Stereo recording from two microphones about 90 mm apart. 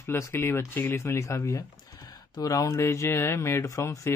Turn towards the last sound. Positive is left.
turn(degrees=35)  # may be behind; listen again after turning